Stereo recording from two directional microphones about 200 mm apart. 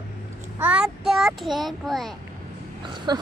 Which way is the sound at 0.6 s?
5° right (ahead or behind).